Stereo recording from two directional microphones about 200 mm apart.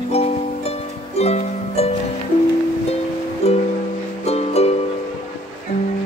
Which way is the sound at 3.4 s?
30° left (ahead or behind).